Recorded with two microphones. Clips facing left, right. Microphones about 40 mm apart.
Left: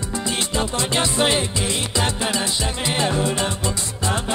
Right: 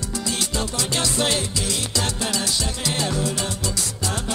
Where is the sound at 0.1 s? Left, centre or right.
Left.